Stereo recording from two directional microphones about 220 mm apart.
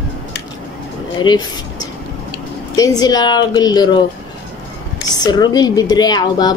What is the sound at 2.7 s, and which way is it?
A woman's voice, 15° left (ahead or behind).